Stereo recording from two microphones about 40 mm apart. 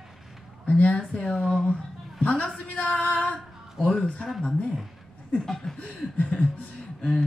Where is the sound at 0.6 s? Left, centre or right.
Left.